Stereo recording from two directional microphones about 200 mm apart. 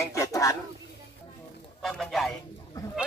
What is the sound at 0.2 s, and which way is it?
Speech, 15° left (ahead or behind).